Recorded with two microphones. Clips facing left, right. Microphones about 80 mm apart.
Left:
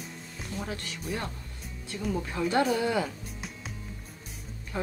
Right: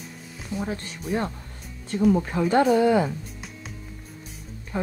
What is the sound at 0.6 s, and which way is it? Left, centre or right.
Speech, right.